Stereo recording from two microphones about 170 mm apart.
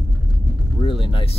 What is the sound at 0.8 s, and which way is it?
Speech, 30° left (ahead or behind).